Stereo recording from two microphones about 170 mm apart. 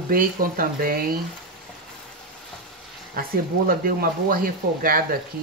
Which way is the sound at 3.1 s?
60° right (ahead or behind).